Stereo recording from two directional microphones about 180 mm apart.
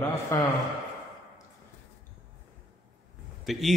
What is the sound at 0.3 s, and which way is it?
Speech, 15° left (ahead or behind).